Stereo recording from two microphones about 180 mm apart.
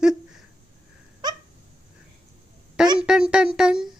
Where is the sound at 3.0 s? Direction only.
5° right (ahead or behind).